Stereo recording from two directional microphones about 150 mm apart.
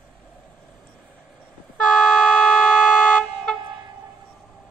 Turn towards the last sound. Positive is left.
turn(degrees=5)  # may be behind; listen again after turning